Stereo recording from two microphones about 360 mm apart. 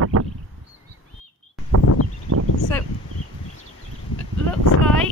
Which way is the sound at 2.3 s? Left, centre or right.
Right.